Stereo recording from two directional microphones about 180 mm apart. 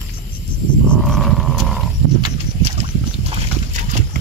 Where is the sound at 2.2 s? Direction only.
35° right (ahead or behind).